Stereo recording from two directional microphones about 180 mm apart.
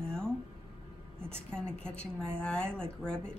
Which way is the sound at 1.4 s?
5° left (ahead or behind).